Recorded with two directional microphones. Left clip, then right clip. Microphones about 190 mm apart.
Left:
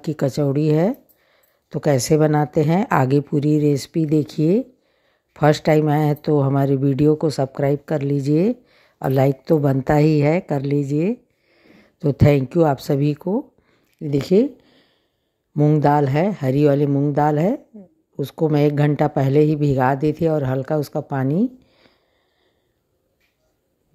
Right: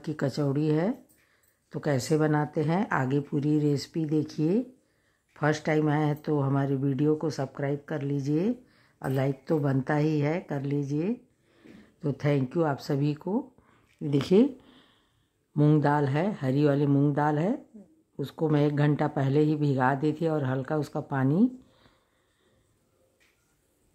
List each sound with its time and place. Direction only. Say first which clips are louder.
0.0 s speech: left 9 dB; 25° left (ahead or behind)
13.7 s a sound: left 6 dB; 20° left (ahead or behind)
15.5 s a man's voice: left 6 dB; 15° left (ahead or behind)
15.8 s speech: left 9 dB; 25° left (ahead or behind)